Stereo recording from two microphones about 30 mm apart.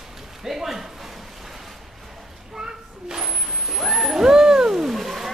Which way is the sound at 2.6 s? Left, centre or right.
Right.